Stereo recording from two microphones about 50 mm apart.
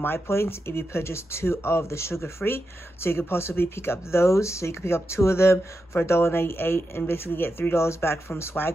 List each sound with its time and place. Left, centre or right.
0.0 s speech: left
7.7 s speech: left